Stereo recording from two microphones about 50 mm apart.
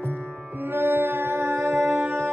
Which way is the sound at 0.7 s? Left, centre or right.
Right.